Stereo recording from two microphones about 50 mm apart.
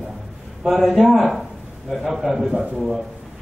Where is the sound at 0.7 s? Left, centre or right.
Centre.